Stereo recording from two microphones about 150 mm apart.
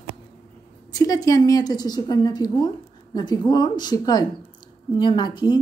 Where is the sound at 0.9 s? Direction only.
25° left (ahead or behind).